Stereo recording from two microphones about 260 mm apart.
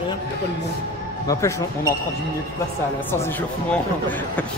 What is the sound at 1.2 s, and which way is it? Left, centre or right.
Speech, centre.